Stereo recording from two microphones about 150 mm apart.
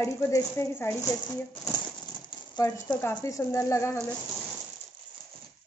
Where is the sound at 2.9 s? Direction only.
15° left (ahead or behind).